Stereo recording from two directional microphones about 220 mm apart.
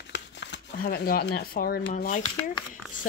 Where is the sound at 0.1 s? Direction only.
55° left (ahead or behind).